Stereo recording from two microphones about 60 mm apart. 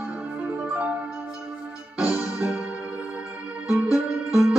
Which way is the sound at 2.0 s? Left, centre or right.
Centre.